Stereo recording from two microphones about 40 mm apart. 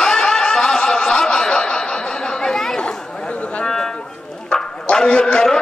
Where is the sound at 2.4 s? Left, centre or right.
Centre.